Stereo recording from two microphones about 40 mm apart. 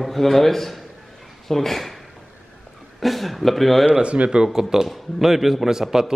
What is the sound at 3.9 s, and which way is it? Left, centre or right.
Speech, right.